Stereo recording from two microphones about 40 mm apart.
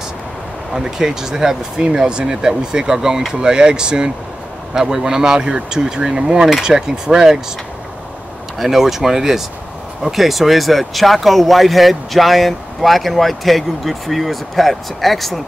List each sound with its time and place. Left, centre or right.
0.7 s speech: centre
8.5 s speech: centre